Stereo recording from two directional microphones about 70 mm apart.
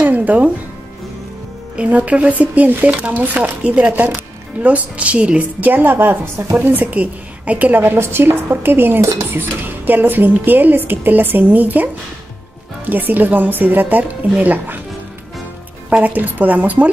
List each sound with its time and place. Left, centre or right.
0.0 s music: right
1.8 s a woman's voice: centre
15.9 s a woman's voice: right